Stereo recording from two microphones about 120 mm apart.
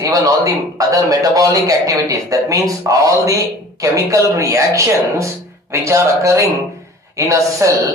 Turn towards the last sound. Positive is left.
turn(degrees=-25)  # may be behind; listen again after turning